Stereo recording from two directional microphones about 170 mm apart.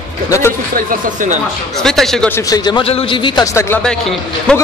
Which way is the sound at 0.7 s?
50° right (ahead or behind).